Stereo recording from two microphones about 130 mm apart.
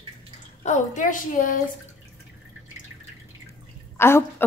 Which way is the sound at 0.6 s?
70° left (ahead or behind).